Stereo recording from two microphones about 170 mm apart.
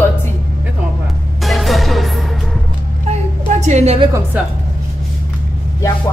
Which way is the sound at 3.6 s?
40° right (ahead or behind).